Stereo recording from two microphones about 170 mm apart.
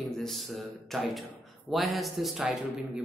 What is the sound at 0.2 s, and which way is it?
Speech, centre (ahead or behind).